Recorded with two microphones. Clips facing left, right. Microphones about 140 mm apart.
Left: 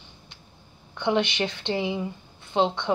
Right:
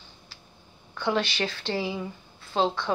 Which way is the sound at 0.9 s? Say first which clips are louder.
Left 3 dB; 20° left (ahead or behind).